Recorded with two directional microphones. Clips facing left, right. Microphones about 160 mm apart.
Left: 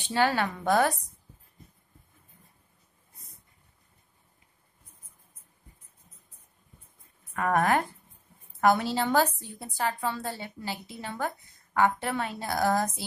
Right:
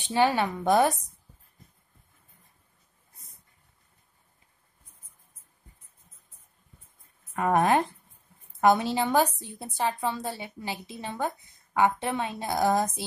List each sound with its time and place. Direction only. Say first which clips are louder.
0.1 s a woman's voice: right 2 dB; 20° right (ahead or behind)
7.3 s a woman's voice: right 2 dB; 20° right (ahead or behind)